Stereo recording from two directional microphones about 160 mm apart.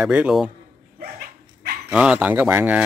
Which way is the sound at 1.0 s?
75° right (ahead or behind).